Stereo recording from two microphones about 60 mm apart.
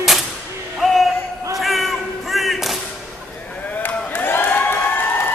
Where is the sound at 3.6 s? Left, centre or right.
Left.